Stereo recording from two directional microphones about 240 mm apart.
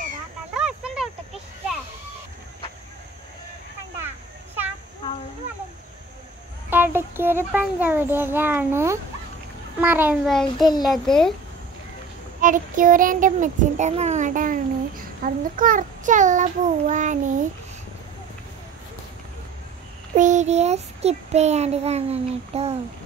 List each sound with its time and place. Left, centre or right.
0.6 s a sound: centre
6.7 s a child's voice: centre
12.4 s a child's voice: right
20.2 s child singing: right